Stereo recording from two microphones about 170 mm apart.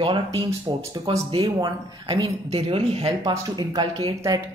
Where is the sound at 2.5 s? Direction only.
35° right (ahead or behind).